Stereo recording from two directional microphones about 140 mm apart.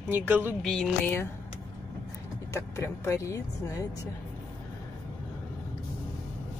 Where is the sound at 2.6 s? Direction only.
20° left (ahead or behind).